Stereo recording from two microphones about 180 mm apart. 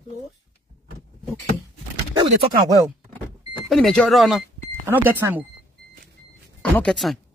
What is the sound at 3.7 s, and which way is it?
Speech, 5° left (ahead or behind).